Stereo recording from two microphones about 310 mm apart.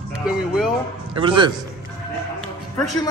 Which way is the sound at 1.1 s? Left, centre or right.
Centre.